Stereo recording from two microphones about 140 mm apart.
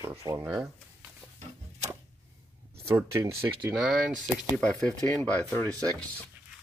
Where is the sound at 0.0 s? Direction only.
20° right (ahead or behind).